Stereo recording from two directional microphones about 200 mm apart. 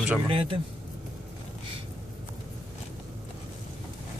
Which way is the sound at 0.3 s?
25° right (ahead or behind).